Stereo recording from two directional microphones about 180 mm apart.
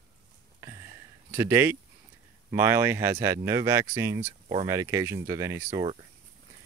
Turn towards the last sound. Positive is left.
turn(degrees=-15)  # may be behind; listen again after turning